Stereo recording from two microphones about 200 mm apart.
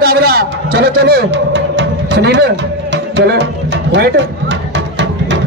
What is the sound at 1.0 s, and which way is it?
Music, 60° right (ahead or behind).